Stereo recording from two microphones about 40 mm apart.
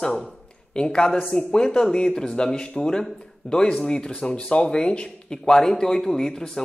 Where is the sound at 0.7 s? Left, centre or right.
Centre.